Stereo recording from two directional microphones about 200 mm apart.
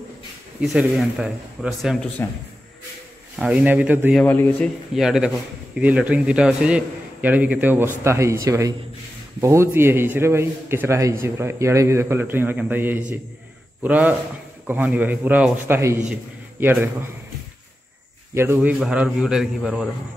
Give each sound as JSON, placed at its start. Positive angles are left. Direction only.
{"t": 0.6, "sound": "a man's voice", "side_deg": -5}
{"t": 3.3, "sound": "a man's voice", "side_deg": -5}
{"t": 4.2, "sound": "a man's voice", "side_deg": 10}
{"t": 5.0, "sound": "a man's voice", "side_deg": 0}
{"t": 18.3, "sound": "a man's voice", "side_deg": -10}